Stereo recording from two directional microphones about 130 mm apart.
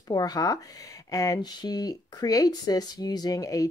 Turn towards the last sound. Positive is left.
turn(degrees=25)  # may be behind; listen again after turning